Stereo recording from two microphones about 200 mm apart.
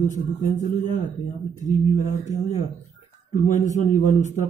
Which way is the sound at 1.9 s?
35° left (ahead or behind).